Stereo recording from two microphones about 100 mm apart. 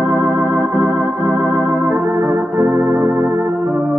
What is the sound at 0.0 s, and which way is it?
Organ, 20° right (ahead or behind).